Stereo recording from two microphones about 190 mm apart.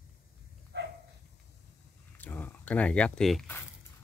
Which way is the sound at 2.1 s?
10° left (ahead or behind).